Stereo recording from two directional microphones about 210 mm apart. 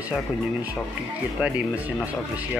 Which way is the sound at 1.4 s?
5° right (ahead or behind).